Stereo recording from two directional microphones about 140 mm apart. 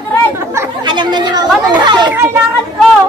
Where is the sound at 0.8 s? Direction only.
30° right (ahead or behind).